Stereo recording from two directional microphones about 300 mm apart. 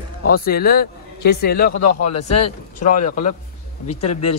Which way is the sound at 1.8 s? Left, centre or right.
Left.